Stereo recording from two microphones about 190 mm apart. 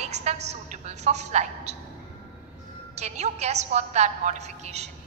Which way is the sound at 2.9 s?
35° right (ahead or behind).